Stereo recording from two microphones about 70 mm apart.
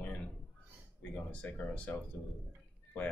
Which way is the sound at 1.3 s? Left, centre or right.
Left.